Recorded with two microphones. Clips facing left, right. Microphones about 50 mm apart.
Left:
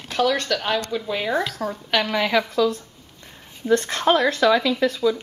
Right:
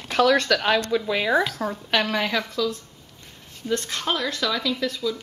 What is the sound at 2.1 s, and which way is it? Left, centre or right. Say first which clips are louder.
Speech: left 5 dB; centre.